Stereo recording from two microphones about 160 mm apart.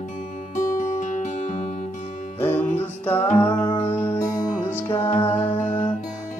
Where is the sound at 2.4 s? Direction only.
15° left (ahead or behind).